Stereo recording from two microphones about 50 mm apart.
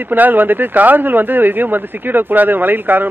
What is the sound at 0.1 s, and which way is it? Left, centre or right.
Speech, right.